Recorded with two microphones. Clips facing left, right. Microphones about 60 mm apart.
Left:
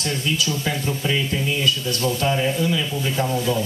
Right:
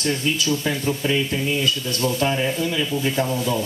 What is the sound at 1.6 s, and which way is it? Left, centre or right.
Speech, right.